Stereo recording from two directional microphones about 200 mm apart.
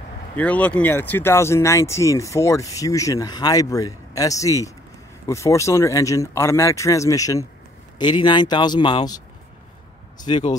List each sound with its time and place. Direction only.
0.4 s speech: 5° left (ahead or behind)
10.2 s speech: 25° left (ahead or behind)